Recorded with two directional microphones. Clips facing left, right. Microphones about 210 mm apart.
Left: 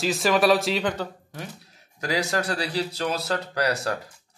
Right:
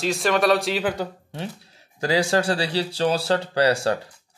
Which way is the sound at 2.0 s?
30° right (ahead or behind).